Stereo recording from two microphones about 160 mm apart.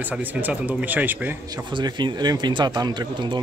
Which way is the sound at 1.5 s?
25° right (ahead or behind).